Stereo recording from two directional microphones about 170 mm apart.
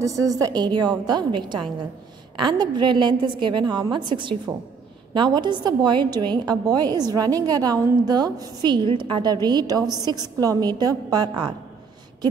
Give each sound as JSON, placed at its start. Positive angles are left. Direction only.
{"t": 0.0, "sound": "a woman's voice", "side_deg": -20}